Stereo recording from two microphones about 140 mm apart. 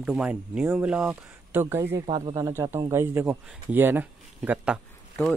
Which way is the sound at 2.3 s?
20° right (ahead or behind).